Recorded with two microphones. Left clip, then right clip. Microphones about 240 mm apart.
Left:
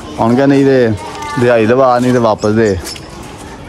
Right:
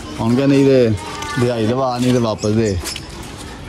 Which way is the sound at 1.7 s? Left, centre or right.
Left.